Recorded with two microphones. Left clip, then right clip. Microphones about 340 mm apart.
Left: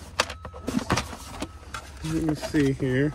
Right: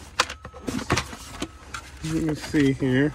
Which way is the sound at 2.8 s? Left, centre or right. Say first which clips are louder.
Right 3 dB; centre.